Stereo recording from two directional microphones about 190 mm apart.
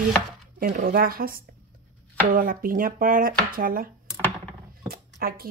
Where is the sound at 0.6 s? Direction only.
55° right (ahead or behind).